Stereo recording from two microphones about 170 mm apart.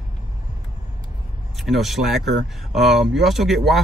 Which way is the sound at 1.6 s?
Centre (ahead or behind).